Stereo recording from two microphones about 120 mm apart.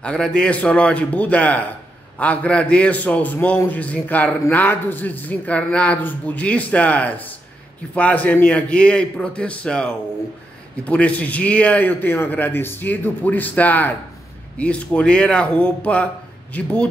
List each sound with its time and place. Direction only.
0.0 s a man's voice: 10° left (ahead or behind)